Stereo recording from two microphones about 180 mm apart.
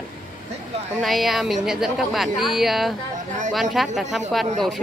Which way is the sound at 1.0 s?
Centre (ahead or behind).